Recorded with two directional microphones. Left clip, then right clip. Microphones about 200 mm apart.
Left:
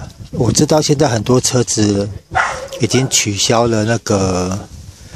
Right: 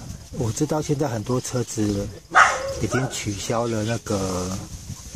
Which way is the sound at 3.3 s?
45° left (ahead or behind).